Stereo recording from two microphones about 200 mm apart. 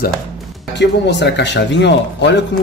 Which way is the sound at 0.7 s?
60° left (ahead or behind).